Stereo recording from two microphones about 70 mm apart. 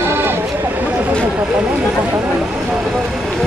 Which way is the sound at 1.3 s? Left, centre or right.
Centre.